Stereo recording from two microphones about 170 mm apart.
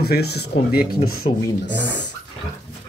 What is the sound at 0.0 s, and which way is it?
Speech, 70° left (ahead or behind).